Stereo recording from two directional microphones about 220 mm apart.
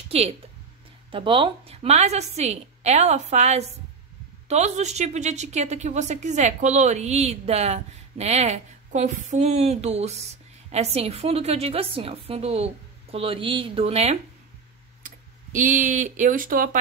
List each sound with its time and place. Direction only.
0.1 s a woman's voice: 25° right (ahead or behind)